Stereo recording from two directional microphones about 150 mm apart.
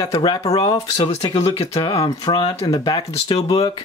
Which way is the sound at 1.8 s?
25° left (ahead or behind).